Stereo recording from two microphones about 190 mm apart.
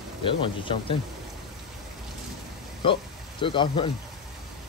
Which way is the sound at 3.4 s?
25° left (ahead or behind).